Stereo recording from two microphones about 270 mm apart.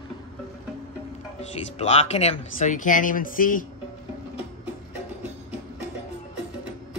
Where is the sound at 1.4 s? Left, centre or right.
Left.